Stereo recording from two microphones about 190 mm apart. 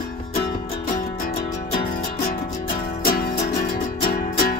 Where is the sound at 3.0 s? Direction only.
50° left (ahead or behind).